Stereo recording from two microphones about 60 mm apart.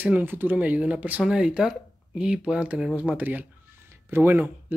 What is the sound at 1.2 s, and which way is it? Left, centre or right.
Speech, centre.